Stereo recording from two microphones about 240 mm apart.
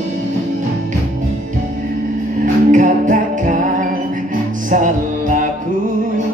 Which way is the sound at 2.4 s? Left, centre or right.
Right.